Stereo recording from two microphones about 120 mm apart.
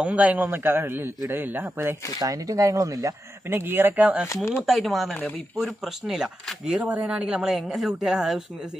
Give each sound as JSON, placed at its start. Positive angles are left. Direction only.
{"t": 0.0, "sound": "a man's voice", "side_deg": -10}
{"t": 2.1, "sound": "speech", "side_deg": -30}
{"t": 4.6, "sound": "a woman's voice", "side_deg": 0}